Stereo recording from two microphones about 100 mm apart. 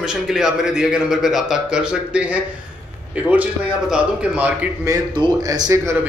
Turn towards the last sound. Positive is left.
turn(degrees=-35)  # may be behind; listen again after turning